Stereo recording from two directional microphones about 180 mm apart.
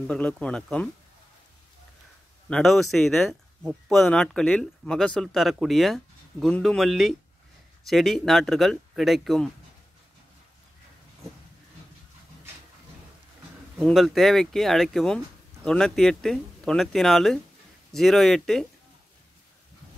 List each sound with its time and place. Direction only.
0.0 s speech: 5° left (ahead or behind)
2.5 s speech: centre (ahead or behind)
13.8 s speech: centre (ahead or behind)